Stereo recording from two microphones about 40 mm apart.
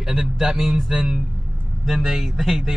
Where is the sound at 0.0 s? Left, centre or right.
Centre.